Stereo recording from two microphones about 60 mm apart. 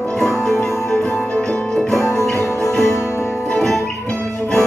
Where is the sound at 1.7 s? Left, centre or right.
Centre.